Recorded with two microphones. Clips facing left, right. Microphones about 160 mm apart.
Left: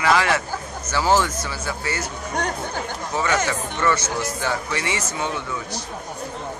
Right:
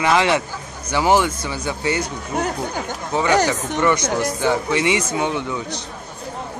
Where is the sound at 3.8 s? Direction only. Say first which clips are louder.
Right 4 dB; 15° right (ahead or behind).